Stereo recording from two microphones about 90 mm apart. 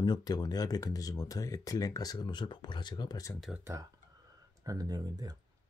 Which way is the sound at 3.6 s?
35° right (ahead or behind).